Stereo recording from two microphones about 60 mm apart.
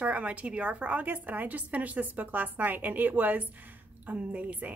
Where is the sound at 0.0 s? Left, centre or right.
Right.